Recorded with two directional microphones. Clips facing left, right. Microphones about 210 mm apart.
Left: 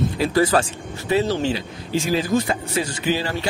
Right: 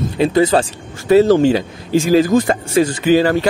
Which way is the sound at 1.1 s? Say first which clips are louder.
Right 10 dB; 45° right (ahead or behind).